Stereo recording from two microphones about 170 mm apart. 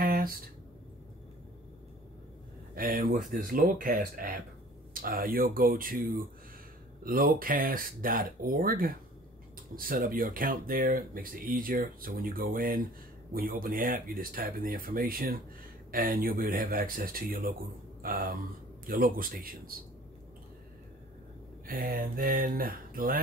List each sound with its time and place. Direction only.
0.0 s a sound: 55° right (ahead or behind)
2.7 s speech: 55° right (ahead or behind)
21.6 s speech: 60° right (ahead or behind)